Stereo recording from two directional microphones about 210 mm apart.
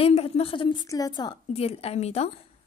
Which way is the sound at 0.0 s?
30° left (ahead or behind).